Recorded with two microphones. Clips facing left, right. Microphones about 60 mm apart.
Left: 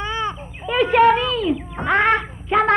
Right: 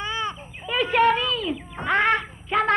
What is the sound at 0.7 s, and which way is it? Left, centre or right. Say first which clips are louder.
A child's voice: left 5 dB; left.